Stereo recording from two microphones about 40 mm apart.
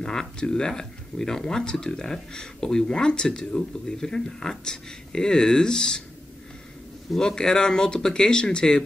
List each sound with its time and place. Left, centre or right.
0.0 s speech: centre
7.2 s speech: centre